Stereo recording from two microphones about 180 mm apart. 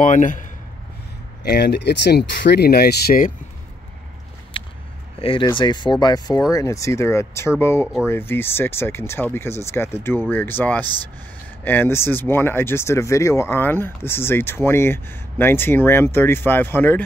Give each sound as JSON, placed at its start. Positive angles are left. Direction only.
{"t": 0.0, "sound": "a man's voice", "side_deg": 45}
{"t": 1.4, "sound": "speech", "side_deg": 65}
{"t": 4.6, "sound": "a sound", "side_deg": 30}
{"t": 5.2, "sound": "speech", "side_deg": 30}